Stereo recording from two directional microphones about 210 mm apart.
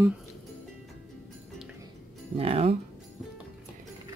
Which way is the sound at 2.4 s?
30° right (ahead or behind).